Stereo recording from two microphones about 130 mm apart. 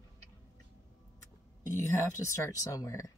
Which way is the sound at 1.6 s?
25° left (ahead or behind).